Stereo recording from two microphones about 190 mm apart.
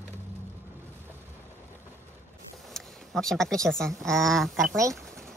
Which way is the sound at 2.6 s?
Centre (ahead or behind).